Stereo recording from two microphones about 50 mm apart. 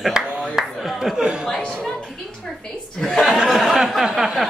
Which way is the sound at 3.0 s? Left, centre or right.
Centre.